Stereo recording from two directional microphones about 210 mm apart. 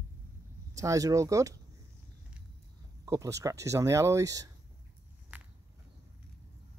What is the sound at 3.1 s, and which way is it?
Speech, 15° right (ahead or behind).